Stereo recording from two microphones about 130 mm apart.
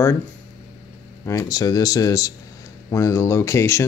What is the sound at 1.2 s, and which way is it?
Speech, 25° left (ahead or behind).